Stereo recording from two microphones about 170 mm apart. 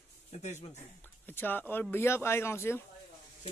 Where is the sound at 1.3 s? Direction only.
10° left (ahead or behind).